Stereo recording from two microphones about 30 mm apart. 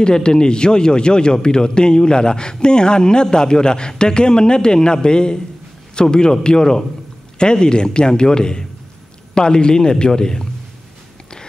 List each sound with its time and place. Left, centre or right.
0.0 s a man's voice: left